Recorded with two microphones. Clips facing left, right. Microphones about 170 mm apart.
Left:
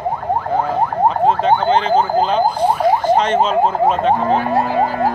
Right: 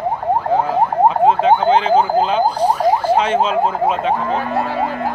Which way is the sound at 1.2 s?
5° right (ahead or behind).